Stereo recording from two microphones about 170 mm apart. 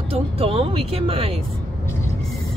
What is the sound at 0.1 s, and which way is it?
Speech, 35° right (ahead or behind).